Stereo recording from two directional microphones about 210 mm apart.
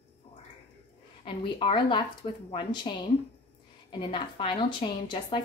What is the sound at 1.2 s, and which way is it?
A woman's voice, 25° left (ahead or behind).